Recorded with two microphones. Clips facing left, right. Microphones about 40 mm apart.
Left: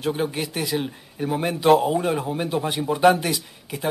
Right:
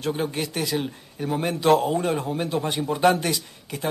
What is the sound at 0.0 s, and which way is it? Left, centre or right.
A man's voice, centre.